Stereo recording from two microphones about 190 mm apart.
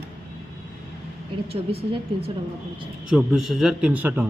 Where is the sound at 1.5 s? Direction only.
30° right (ahead or behind).